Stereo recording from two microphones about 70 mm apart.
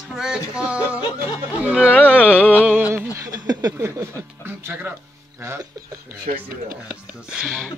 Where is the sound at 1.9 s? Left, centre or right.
Left.